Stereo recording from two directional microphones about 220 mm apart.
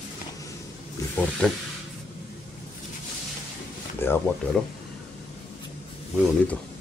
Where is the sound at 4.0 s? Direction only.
10° left (ahead or behind).